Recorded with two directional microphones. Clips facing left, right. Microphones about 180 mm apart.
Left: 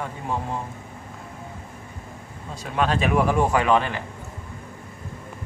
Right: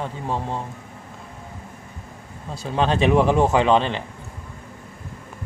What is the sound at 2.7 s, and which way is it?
Speech, 25° right (ahead or behind).